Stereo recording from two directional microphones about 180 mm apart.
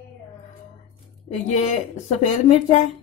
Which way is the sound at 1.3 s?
40° left (ahead or behind).